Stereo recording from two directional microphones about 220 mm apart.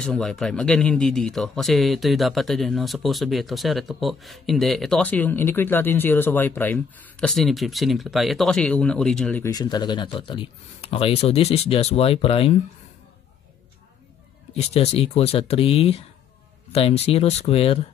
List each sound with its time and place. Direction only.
0.0 s speech: 5° left (ahead or behind); by 12.5 s 25° left (ahead or behind)
14.5 s speech: 30° left (ahead or behind)